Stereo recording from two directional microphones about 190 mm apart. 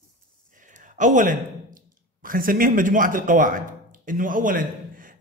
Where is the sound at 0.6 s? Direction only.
40° right (ahead or behind).